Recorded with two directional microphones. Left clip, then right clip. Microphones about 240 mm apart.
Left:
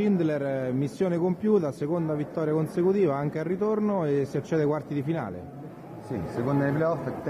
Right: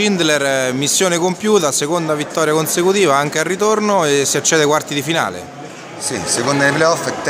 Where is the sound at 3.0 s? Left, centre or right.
Centre.